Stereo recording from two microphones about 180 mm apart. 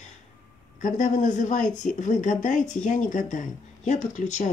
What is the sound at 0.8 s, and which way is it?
Speech, 45° left (ahead or behind).